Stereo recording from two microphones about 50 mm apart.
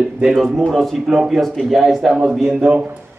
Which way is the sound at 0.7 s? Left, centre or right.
Centre.